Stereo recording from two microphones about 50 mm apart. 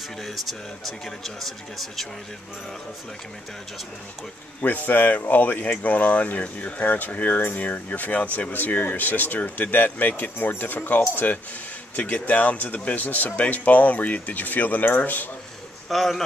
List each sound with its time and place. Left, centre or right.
0.2 s speech: centre
4.6 s speech: left
15.9 s speech: centre